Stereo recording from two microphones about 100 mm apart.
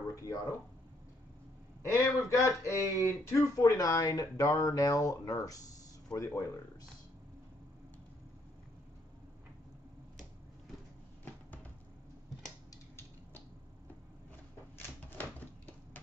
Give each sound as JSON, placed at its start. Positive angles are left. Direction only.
{"t": 0.1, "sound": "speech", "side_deg": 30}
{"t": 1.9, "sound": "speech", "side_deg": 30}
{"t": 15.1, "sound": "a sound", "side_deg": 15}